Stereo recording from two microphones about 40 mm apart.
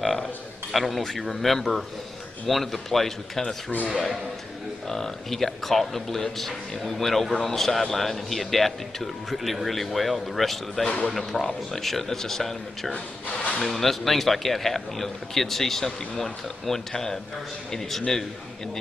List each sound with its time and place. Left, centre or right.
0.7 s speech: centre
4.8 s speech: centre
12.9 s speech: left
13.6 s speech: centre